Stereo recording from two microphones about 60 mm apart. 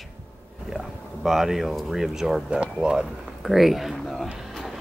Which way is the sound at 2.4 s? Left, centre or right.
Centre.